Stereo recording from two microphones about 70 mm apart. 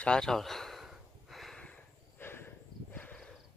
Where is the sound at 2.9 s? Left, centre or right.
Left.